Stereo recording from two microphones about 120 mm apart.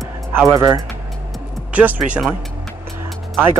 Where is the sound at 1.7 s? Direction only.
10° right (ahead or behind).